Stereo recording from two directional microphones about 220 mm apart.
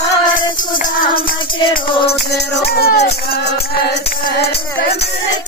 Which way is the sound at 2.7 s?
45° left (ahead or behind).